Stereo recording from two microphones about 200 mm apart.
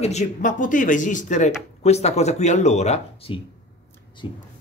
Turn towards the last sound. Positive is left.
turn(degrees=25)  # may be behind; listen again after turning